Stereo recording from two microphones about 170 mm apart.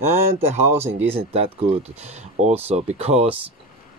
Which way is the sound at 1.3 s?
40° right (ahead or behind).